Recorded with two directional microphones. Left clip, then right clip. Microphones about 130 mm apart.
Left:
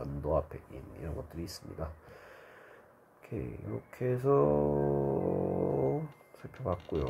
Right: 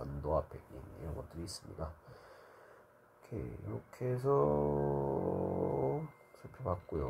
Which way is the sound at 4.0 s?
20° left (ahead or behind).